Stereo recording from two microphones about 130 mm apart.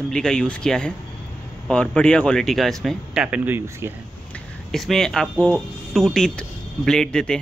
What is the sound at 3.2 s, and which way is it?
Speech, 10° right (ahead or behind).